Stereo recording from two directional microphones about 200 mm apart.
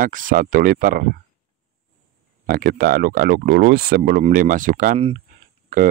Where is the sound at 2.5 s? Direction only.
50° right (ahead or behind).